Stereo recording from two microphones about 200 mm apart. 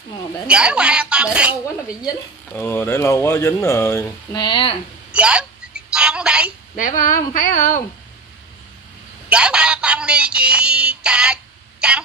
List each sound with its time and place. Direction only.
0.5 s a woman's voice: 5° right (ahead or behind)
2.5 s speech: 10° left (ahead or behind)
5.1 s telephone: 5° right (ahead or behind)
6.8 s a woman's voice: 40° left (ahead or behind)
9.3 s synthetic singing: 5° right (ahead or behind)